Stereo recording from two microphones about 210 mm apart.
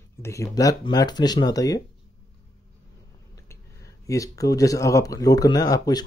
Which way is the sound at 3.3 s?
15° left (ahead or behind).